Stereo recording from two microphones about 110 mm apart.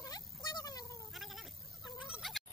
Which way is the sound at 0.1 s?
40° left (ahead or behind).